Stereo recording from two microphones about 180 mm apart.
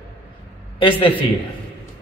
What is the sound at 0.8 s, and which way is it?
Speech, 30° left (ahead or behind).